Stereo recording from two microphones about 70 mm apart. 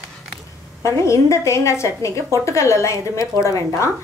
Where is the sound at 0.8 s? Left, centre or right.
Left.